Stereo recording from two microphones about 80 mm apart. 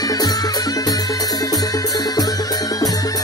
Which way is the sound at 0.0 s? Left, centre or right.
Left.